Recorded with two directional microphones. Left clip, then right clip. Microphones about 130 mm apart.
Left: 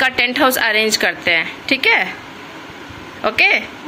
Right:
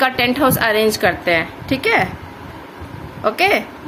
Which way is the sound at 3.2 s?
10° right (ahead or behind).